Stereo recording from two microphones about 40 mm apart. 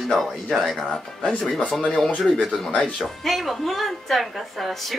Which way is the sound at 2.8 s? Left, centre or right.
Centre.